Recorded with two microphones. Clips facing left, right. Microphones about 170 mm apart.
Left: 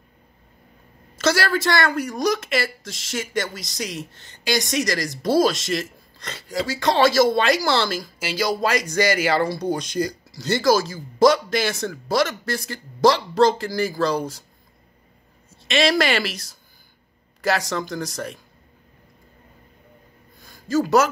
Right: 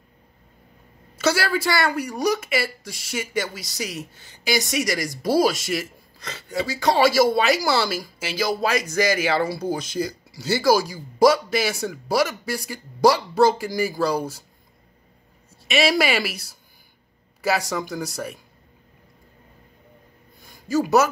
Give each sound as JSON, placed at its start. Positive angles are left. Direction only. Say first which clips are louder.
{"t": 1.1, "sound": "speech", "louder": "left 1 dB", "side_deg": -10}
{"t": 6.3, "sound": "speech", "louder": "left 1 dB", "side_deg": 90}
{"t": 6.8, "sound": "speech", "louder": "even", "side_deg": -10}
{"t": 15.6, "sound": "speech", "louder": "left 1 dB", "side_deg": -10}
{"t": 20.4, "sound": "a sound", "louder": "left 1 dB", "side_deg": -10}